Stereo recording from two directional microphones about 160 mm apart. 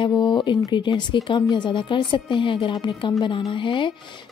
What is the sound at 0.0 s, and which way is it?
Speech, 30° left (ahead or behind).